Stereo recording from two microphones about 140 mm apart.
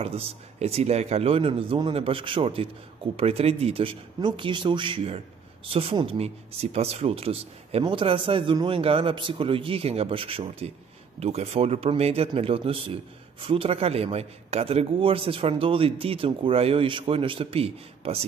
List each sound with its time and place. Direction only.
0.0 s speech: 45° right (ahead or behind)